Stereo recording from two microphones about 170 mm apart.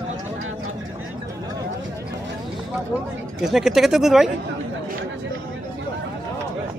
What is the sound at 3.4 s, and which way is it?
Speech, centre (ahead or behind).